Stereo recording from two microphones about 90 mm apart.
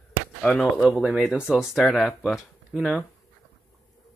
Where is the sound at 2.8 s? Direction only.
10° right (ahead or behind).